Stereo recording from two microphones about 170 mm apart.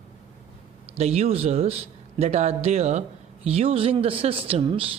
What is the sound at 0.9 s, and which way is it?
Speech, 40° right (ahead or behind).